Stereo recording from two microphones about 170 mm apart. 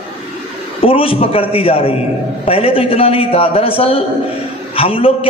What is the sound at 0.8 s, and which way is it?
Speech, 35° left (ahead or behind).